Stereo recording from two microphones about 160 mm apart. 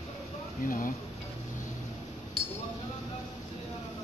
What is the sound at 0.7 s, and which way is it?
Speech, 60° left (ahead or behind).